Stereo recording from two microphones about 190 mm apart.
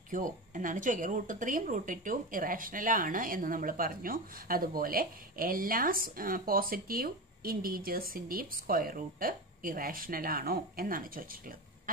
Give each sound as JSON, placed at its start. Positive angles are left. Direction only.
{"t": 0.1, "sound": "speech", "side_deg": -45}